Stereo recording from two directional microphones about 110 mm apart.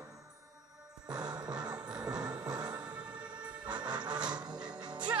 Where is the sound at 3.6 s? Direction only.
40° right (ahead or behind).